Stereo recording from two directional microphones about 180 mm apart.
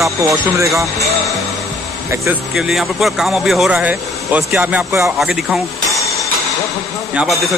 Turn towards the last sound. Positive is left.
turn(degrees=0)  # may be behind; listen again after turning